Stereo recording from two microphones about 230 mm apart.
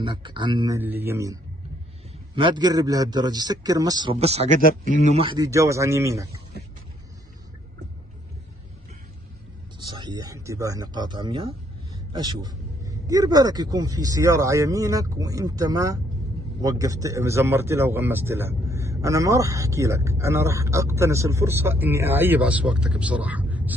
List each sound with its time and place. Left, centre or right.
0.0 s a man's voice: right
9.9 s a man's voice: centre